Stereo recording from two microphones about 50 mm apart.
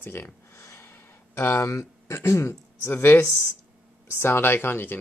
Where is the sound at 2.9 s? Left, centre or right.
Left.